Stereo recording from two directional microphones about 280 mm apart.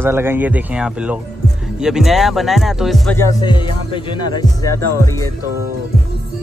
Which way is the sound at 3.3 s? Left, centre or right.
Centre.